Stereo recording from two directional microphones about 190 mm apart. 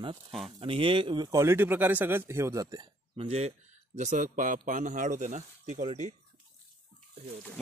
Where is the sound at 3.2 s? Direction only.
35° right (ahead or behind).